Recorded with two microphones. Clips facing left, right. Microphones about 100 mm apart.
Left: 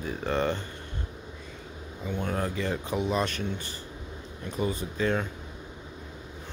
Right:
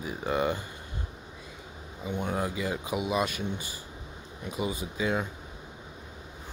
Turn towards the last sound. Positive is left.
turn(degrees=-10)  # may be behind; listen again after turning